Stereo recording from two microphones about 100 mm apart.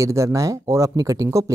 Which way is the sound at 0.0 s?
30° right (ahead or behind).